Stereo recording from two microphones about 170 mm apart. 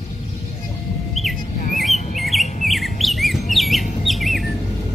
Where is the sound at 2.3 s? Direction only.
Centre (ahead or behind).